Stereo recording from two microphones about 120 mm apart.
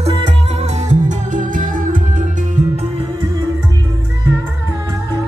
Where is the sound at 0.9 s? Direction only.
90° right.